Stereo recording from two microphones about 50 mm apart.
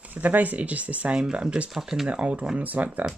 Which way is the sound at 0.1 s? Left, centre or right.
Right.